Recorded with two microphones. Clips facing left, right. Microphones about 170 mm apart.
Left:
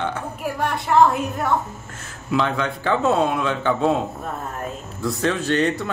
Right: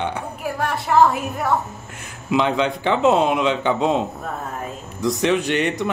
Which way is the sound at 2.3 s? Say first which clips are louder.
Right 3 dB; 20° right (ahead or behind).